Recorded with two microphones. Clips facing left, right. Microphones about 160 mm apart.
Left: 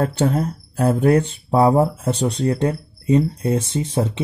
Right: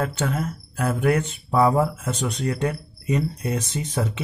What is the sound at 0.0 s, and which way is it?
Speech, 35° left (ahead or behind).